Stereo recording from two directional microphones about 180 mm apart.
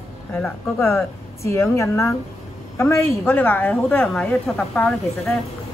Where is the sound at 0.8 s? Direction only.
15° left (ahead or behind).